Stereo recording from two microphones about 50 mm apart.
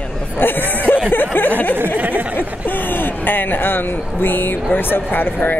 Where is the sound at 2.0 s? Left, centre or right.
Right.